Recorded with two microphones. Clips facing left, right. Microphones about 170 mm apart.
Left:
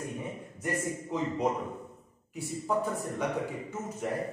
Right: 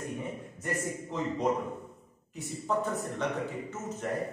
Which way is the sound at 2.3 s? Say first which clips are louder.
Left 1 dB; 10° left (ahead or behind).